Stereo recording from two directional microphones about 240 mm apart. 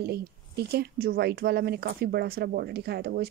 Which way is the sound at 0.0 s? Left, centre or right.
Right.